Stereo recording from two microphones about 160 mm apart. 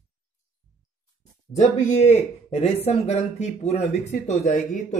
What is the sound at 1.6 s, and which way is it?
A man's voice, 50° left (ahead or behind).